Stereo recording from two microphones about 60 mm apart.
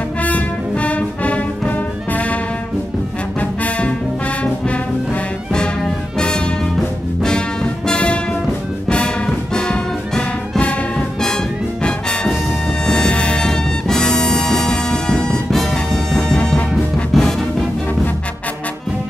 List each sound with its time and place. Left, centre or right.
0.2 s music: left
3.3 s music: left; by 17.6 s centre